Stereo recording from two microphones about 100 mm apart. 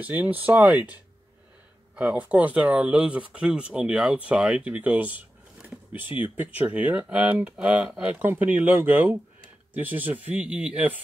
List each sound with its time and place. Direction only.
0.0 s speech: 15° right (ahead or behind)
2.0 s speech: 15° right (ahead or behind)